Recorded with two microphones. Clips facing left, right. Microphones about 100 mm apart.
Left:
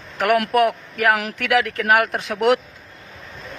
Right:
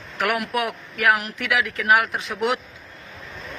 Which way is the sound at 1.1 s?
90° left.